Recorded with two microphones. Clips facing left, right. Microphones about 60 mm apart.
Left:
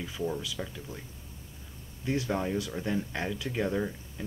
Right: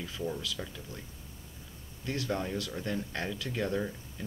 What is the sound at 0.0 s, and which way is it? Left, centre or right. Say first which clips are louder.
Speech: left 3 dB; centre.